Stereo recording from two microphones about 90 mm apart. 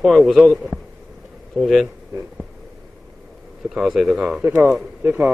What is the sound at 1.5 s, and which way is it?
Speech, centre (ahead or behind).